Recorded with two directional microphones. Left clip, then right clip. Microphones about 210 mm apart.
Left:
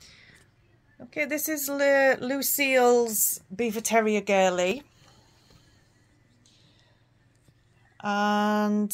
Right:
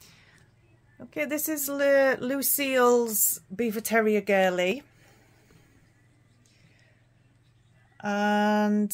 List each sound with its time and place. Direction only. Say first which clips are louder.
0.0 s a sound: left 3 dB; 30° right (ahead or behind)
0.9 s speech: left 1 dB; 25° right (ahead or behind)
8.0 s speech: even; 25° right (ahead or behind)